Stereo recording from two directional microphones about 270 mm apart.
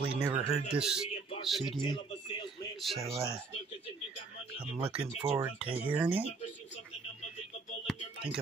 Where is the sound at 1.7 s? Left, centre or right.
Centre.